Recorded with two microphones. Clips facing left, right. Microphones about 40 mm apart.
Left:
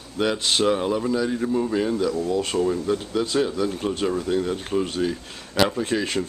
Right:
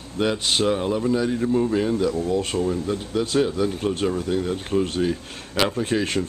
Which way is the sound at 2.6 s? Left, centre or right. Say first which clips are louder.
Left 1 dB; centre.